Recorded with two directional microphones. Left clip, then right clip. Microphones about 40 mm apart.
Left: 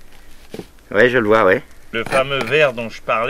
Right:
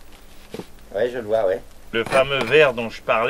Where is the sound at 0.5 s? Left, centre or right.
Left.